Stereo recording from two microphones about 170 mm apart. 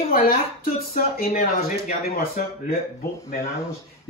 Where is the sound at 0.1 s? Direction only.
60° left (ahead or behind).